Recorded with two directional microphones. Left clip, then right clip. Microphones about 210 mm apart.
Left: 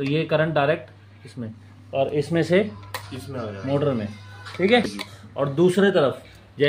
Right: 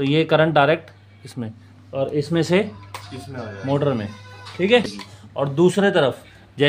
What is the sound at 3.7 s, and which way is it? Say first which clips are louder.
Speech: right 2 dB; 50° right (ahead or behind).